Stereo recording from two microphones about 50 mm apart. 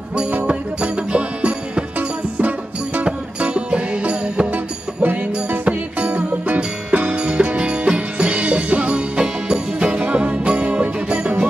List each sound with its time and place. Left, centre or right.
0.8 s music: right
2.0 s music: right
3.1 s music: centre
5.0 s music: right
5.7 s music: right